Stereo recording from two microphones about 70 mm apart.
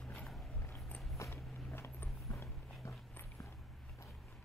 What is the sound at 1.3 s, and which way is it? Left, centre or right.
Walk, left.